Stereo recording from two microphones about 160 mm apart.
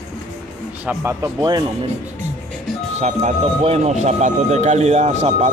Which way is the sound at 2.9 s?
45° right (ahead or behind).